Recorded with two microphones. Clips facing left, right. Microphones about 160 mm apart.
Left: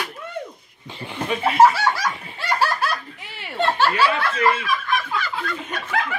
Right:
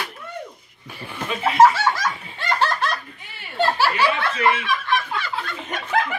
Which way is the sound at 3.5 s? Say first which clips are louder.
Even; 5° right (ahead or behind).